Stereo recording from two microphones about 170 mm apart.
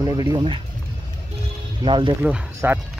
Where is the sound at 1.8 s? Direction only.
30° right (ahead or behind).